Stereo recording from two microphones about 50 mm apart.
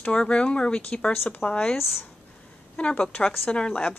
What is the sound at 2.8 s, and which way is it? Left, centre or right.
A woman's voice, left.